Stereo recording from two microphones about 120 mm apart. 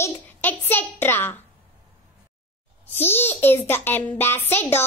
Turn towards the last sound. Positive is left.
turn(degrees=20)  # may be behind; listen again after turning